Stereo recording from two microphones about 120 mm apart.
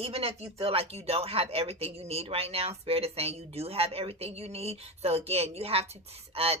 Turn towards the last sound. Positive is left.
turn(degrees=-55)  # may be behind; listen again after turning